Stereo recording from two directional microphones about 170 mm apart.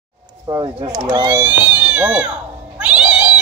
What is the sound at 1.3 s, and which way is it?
Speech, 10° right (ahead or behind).